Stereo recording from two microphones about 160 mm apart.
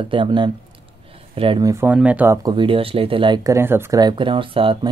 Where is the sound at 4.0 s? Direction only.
30° right (ahead or behind).